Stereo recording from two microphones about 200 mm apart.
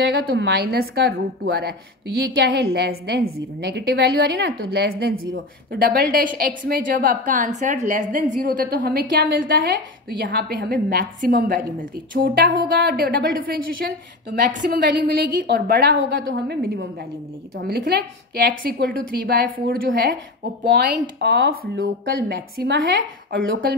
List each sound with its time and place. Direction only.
0.0 s a woman's voice: 60° right (ahead or behind)
10.0 s a woman's voice: 50° right (ahead or behind)